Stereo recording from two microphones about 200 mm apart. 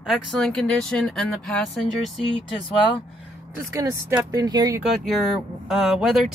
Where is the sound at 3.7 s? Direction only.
15° right (ahead or behind).